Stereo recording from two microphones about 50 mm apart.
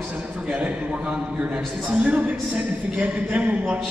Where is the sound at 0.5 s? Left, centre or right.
Right.